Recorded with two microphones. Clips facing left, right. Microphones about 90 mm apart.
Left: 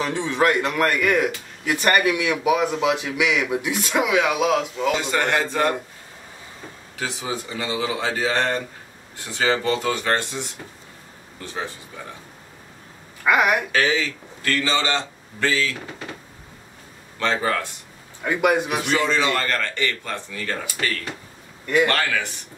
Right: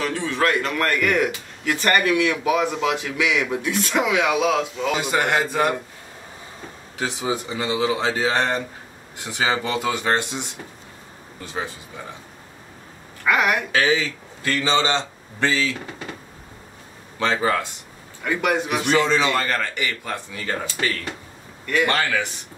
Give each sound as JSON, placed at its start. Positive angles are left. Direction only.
{"t": 0.0, "sound": "a man's voice", "side_deg": 20}
{"t": 4.9, "sound": "a man's voice", "side_deg": -15}
{"t": 7.0, "sound": "a man's voice", "side_deg": -20}
{"t": 13.2, "sound": "a woman's voice", "side_deg": 15}
{"t": 13.7, "sound": "a man's voice", "side_deg": -20}
{"t": 17.2, "sound": "a man's voice", "side_deg": -15}
{"t": 18.2, "sound": "a man's voice", "side_deg": 15}
{"t": 18.9, "sound": "a man's voice", "side_deg": -20}
{"t": 21.8, "sound": "a man's voice", "side_deg": -20}